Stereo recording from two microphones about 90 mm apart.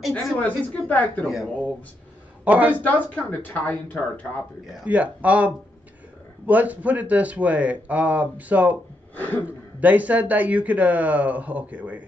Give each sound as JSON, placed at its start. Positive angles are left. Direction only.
{"t": 0.1, "sound": "speech", "side_deg": 15}
{"t": 1.2, "sound": "speech", "side_deg": -5}
{"t": 2.4, "sound": "speech", "side_deg": -15}
{"t": 3.2, "sound": "speech", "side_deg": 15}
{"t": 4.8, "sound": "a man's voice", "side_deg": -15}
{"t": 9.1, "sound": "speech", "side_deg": 20}
{"t": 9.5, "sound": "a man's voice", "side_deg": -15}